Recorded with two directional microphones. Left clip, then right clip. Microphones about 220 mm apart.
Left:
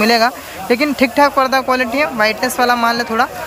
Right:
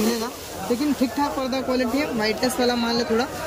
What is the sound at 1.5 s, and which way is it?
Speech, centre (ahead or behind).